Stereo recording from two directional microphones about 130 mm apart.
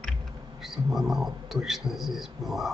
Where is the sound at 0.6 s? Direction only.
Centre (ahead or behind).